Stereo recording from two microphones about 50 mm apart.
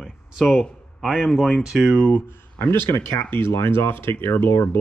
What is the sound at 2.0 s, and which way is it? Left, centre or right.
Speech, left.